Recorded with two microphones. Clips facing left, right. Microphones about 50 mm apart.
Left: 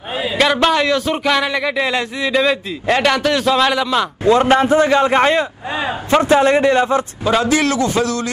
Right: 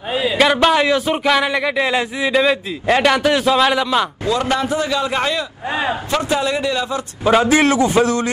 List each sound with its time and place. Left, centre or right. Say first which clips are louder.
0.4 s speech: even; centre
4.2 s a man's voice: left 6 dB; left
7.2 s a man's voice: right 3 dB; centre